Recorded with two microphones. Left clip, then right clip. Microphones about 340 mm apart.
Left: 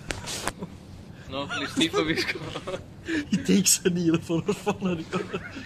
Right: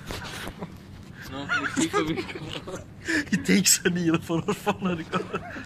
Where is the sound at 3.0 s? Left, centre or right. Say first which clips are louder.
Right 3 dB; centre.